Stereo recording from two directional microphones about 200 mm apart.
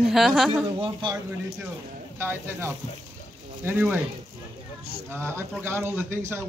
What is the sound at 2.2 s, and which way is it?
Speech, 10° right (ahead or behind).